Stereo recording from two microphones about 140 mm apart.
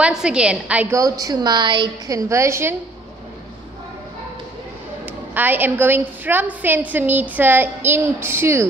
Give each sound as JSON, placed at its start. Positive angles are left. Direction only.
{"t": 0.0, "sound": "a woman's voice", "side_deg": -5}
{"t": 0.9, "sound": "a woman's voice", "side_deg": -25}
{"t": 5.0, "sound": "a woman's voice", "side_deg": -15}